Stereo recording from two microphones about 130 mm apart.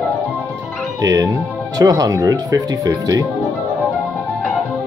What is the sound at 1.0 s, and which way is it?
Speech, 30° right (ahead or behind).